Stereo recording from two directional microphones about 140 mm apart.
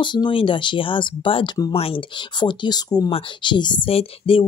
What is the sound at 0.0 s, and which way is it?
Speech, 35° left (ahead or behind).